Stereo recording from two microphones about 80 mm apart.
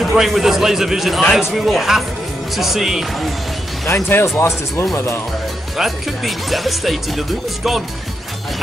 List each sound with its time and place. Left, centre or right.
0.0 s speech: centre
3.8 s speech: left
5.8 s speech: centre